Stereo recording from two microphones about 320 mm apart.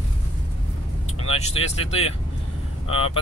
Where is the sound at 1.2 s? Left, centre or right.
Centre.